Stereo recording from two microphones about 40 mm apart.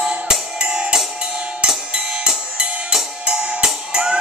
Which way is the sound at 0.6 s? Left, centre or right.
Right.